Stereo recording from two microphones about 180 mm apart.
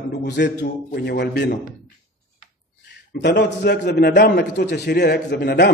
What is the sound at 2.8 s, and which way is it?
A man's voice, 70° left (ahead or behind).